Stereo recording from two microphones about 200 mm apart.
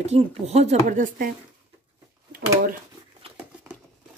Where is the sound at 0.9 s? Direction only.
45° right (ahead or behind).